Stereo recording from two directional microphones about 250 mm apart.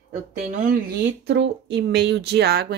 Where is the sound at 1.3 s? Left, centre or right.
Right.